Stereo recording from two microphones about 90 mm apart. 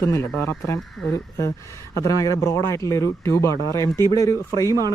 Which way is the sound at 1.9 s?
35° left (ahead or behind).